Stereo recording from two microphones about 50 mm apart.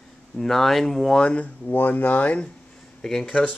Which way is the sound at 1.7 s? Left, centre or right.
Left.